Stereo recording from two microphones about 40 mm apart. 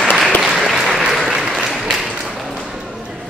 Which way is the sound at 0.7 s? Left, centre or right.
Centre.